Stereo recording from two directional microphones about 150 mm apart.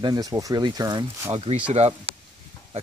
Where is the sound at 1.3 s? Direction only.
40° right (ahead or behind).